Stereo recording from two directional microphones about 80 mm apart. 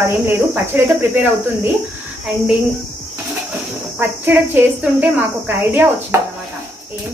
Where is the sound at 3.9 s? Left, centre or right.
Right.